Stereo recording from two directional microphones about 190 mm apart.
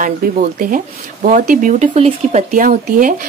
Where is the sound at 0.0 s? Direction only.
45° right (ahead or behind).